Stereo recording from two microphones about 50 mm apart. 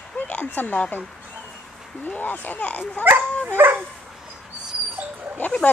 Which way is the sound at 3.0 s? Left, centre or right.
Right.